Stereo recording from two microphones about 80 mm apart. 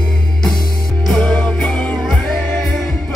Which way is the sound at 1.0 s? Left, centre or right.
Centre.